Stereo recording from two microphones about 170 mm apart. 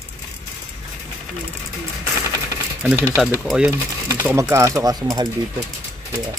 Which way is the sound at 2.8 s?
5° right (ahead or behind).